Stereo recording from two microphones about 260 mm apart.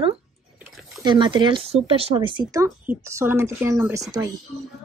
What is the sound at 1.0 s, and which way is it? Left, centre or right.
Speech, centre.